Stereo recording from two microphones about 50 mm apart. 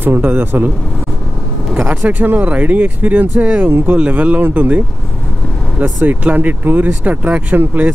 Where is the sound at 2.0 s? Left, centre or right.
Right.